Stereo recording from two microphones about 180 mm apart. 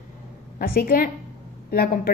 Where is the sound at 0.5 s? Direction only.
55° left (ahead or behind).